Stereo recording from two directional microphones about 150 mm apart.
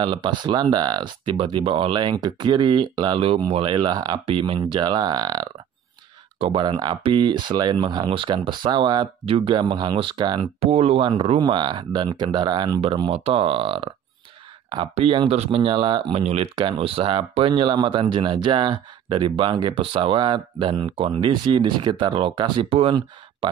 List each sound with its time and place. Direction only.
0.0 s speech: 30° right (ahead or behind)
10.4 s speech: 40° right (ahead or behind)